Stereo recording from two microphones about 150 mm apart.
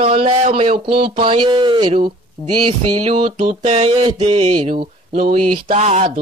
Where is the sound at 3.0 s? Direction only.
45° right (ahead or behind).